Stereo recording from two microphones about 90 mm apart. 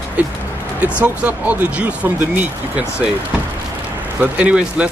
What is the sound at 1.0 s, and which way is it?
Speech, 15° right (ahead or behind).